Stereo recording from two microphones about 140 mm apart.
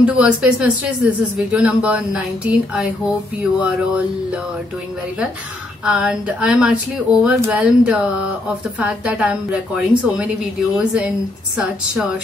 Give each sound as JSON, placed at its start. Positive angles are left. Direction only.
{"t": 0.0, "sound": "speech", "side_deg": -5}
{"t": 5.9, "sound": "speech", "side_deg": -5}